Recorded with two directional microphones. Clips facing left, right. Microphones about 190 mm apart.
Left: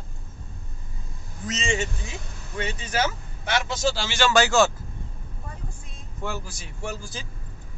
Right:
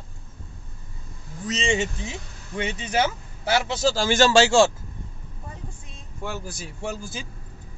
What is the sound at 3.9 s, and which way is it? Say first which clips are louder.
Speech: right 10 dB; 45° right (ahead or behind).